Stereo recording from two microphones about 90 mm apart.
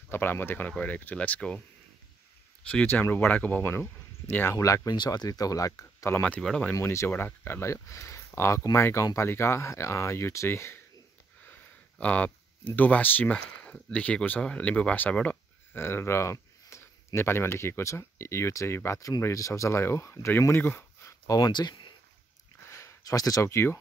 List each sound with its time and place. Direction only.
0.1 s speech: 25° left (ahead or behind)
2.7 s speech: 15° left (ahead or behind)
4.6 s speech: 35° left (ahead or behind)
4.9 s speech: 50° left (ahead or behind); by 6.2 s 35° left (ahead or behind)
6.2 s speech: 10° left (ahead or behind)
6.7 s speech: 35° left (ahead or behind)
12.0 s speech: 15° left (ahead or behind)
15.8 s speech: 25° left (ahead or behind)
21.3 s speech: 50° left (ahead or behind)
22.7 s a sound: 35° left (ahead or behind)
23.5 s speech: 30° left (ahead or behind)